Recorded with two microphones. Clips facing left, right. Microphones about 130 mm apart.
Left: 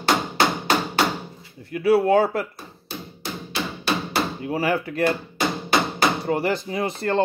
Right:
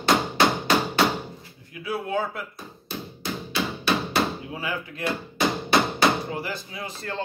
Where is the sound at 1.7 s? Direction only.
70° left (ahead or behind).